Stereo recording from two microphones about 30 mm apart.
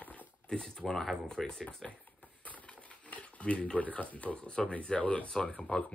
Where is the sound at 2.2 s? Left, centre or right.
Left.